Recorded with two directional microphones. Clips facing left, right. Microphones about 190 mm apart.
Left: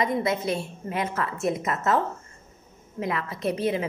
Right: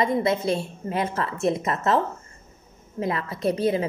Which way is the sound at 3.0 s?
30° right (ahead or behind).